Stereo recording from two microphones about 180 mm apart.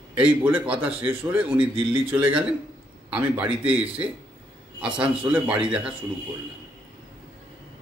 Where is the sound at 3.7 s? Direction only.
5° right (ahead or behind).